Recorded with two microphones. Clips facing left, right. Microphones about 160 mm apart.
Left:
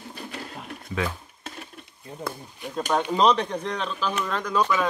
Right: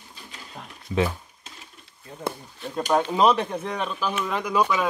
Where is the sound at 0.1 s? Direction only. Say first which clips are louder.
Left 8 dB; 65° left (ahead or behind).